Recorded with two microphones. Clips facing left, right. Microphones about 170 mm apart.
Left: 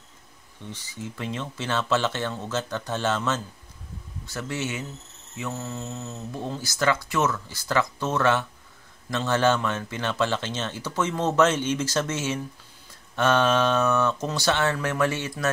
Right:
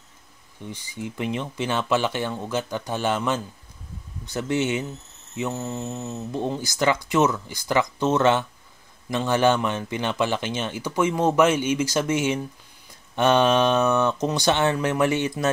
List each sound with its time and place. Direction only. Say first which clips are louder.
0.6 s speech: right 3 dB; 15° right (ahead or behind)